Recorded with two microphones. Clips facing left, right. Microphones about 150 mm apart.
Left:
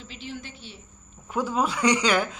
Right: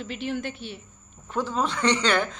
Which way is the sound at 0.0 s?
60° right (ahead or behind).